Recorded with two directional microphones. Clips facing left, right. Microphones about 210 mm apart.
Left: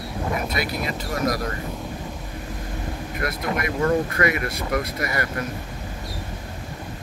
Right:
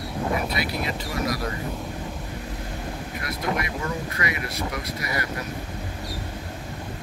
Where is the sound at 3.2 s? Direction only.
55° left (ahead or behind).